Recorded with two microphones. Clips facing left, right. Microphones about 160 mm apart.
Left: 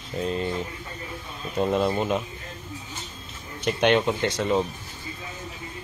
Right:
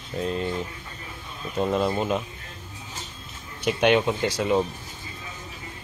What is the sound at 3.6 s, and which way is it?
Speech, centre (ahead or behind).